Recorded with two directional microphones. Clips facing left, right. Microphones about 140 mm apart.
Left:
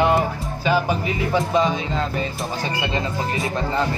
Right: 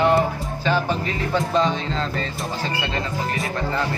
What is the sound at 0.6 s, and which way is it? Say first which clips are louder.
Speech: left 2 dB; 10° left (ahead or behind).